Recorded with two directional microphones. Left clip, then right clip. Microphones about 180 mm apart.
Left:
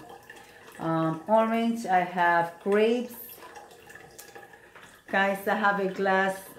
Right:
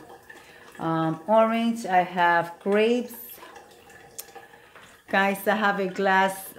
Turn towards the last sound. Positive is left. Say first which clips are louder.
# right 3 dB
turn(degrees=-50)  # may be behind; listen again after turning